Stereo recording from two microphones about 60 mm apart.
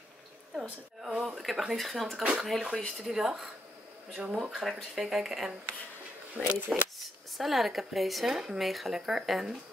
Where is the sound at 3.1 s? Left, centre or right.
Centre.